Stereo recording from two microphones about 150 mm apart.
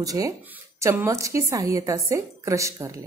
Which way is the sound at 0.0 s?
25° right (ahead or behind).